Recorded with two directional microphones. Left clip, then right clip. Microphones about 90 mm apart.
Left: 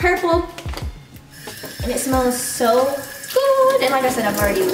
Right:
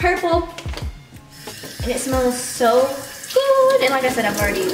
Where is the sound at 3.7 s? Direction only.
15° left (ahead or behind).